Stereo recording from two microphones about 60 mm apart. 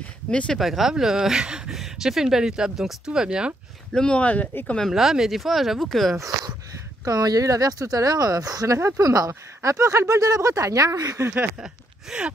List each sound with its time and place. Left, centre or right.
0.3 s speech: centre
0.6 s speech: centre
3.9 s speech: centre
4.9 s speech: centre
7.1 s speech: right
8.7 s speech: right
9.0 s speech: right
9.6 s speech: right
11.2 s speech: right
11.6 s speech: centre